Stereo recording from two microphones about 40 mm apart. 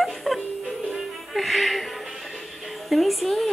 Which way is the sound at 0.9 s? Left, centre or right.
Centre.